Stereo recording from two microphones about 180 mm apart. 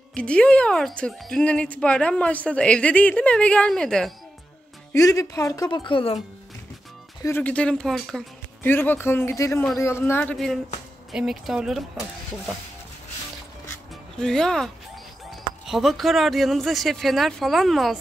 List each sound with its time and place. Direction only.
0.1 s speech: 5° left (ahead or behind)
4.9 s speech: 20° left (ahead or behind)
7.2 s speech: 10° left (ahead or behind)
8.6 s speech: 10° left (ahead or behind)
10.3 s speech: centre (ahead or behind)
14.1 s speech: 5° left (ahead or behind)